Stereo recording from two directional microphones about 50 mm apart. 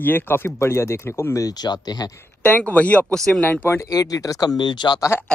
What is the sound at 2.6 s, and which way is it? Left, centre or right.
Speech, left.